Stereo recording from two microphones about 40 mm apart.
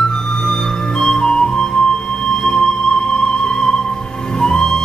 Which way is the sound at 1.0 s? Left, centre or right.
Left.